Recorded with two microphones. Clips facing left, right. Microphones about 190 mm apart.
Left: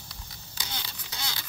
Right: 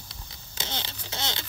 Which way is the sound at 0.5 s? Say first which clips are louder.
Right 5 dB; 25° right (ahead or behind).